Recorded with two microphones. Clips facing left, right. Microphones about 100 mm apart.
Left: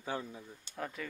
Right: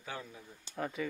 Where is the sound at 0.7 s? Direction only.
Centre (ahead or behind).